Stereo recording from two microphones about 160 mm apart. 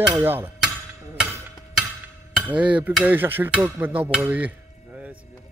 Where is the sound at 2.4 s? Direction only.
10° right (ahead or behind).